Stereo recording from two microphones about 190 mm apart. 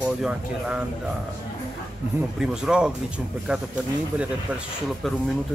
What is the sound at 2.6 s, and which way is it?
Speech, 5° right (ahead or behind).